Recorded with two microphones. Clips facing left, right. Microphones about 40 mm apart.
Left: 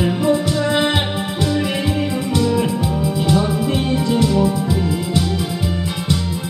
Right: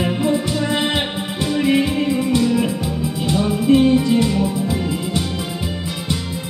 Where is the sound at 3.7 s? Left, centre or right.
Centre.